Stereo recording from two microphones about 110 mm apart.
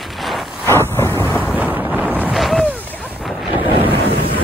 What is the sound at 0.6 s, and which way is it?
Vehicle, 25° left (ahead or behind).